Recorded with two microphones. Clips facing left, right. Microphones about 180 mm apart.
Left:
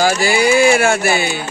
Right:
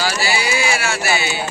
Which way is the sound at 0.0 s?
50° left (ahead or behind).